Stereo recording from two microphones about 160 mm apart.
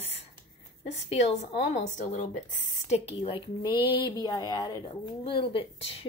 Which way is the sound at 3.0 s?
35° left (ahead or behind).